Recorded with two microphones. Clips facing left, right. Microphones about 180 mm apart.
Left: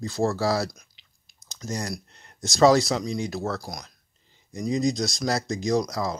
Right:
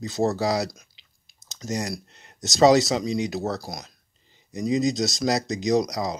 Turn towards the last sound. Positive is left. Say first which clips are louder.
# right 2 dB
turn(degrees=-20)  # may be behind; listen again after turning